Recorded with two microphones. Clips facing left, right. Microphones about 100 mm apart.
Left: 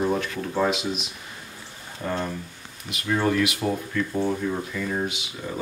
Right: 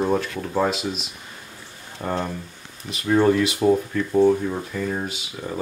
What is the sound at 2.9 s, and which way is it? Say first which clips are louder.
Speech: right 6 dB; 30° right (ahead or behind).